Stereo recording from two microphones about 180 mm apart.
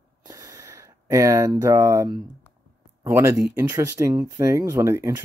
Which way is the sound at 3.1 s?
15° right (ahead or behind).